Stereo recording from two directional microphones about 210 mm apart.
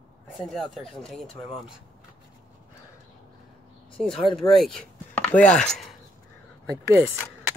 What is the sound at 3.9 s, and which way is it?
Speech, 5° left (ahead or behind).